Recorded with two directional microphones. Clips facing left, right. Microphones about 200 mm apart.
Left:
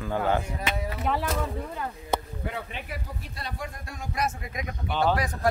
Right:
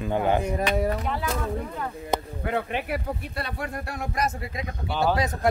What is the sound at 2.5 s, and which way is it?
Speech, 65° right (ahead or behind).